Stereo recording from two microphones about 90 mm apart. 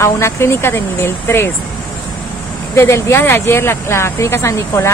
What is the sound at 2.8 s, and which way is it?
Speech, 30° left (ahead or behind).